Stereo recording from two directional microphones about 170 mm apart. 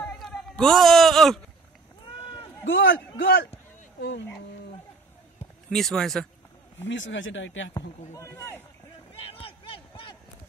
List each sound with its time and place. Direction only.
0.0 s a sound: 5° left (ahead or behind)
2.6 s speech: 90° left
3.2 s a man's voice: 80° left
5.7 s speech: centre (ahead or behind)
6.8 s speech: 90° left
8.1 s speech: 15° left (ahead or behind)